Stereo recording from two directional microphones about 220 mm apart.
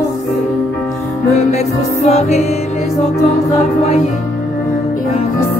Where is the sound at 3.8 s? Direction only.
30° left (ahead or behind).